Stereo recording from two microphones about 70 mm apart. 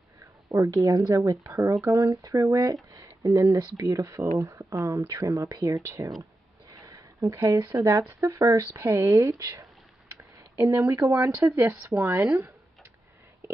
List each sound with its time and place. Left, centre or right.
0.5 s speech: right
6.7 s a sound: right
7.3 s speech: right
8.2 s speech: right
9.1 s speech: right